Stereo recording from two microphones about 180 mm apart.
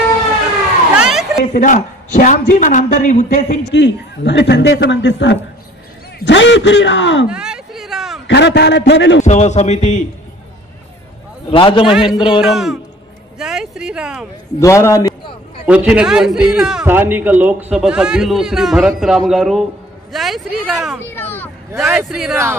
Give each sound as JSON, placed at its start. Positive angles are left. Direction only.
{"t": 0.9, "sound": "a sound", "side_deg": -5}
{"t": 1.4, "sound": "a man's voice", "side_deg": 45}
{"t": 3.7, "sound": "a man's voice", "side_deg": 75}
{"t": 7.2, "sound": "a sound", "side_deg": -5}
{"t": 8.3, "sound": "a man's voice", "side_deg": 70}
{"t": 9.2, "sound": "a man's voice", "side_deg": 40}
{"t": 11.5, "sound": "a man's voice", "side_deg": 30}
{"t": 11.9, "sound": "a man's voice", "side_deg": 0}
{"t": 13.4, "sound": "a sound", "side_deg": -5}
{"t": 14.6, "sound": "a man's voice", "side_deg": 15}
{"t": 15.6, "sound": "a man's voice", "side_deg": -5}
{"t": 21.1, "sound": "a sound", "side_deg": 10}
{"t": 21.7, "sound": "a man's voice", "side_deg": 0}